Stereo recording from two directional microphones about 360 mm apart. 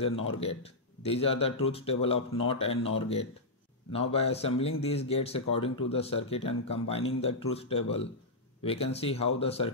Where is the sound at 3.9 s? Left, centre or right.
Centre.